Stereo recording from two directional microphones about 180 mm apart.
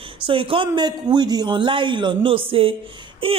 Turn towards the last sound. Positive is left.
turn(degrees=-30)  # may be behind; listen again after turning